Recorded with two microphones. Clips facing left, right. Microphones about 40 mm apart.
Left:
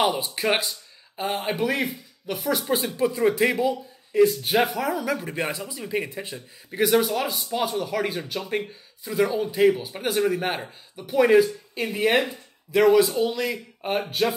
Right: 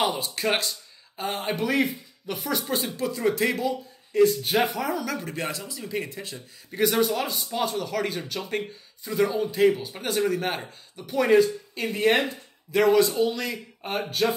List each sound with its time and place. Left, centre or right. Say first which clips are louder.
0.0 s speech: left 2 dB; centre
6.8 s speech: left 2 dB; centre